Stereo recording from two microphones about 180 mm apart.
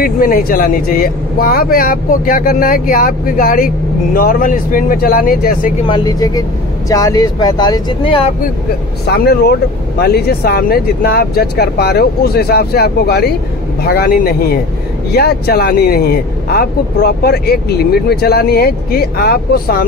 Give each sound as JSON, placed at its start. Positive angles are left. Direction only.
{"t": 0.0, "sound": "speech", "side_deg": 55}
{"t": 5.9, "sound": "speech", "side_deg": 25}
{"t": 9.0, "sound": "speech", "side_deg": 60}